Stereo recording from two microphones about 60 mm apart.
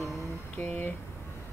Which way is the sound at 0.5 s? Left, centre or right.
Left.